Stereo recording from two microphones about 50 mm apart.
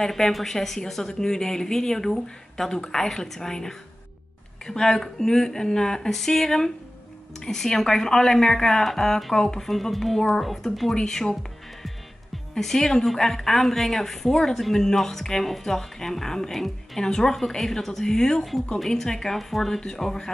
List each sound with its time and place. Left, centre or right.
0.0 s a woman's voice: centre
12.5 s a woman's voice: centre